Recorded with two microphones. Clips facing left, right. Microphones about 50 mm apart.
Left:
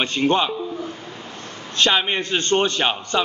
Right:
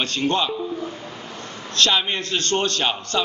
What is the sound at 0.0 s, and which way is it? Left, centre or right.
Speech, left.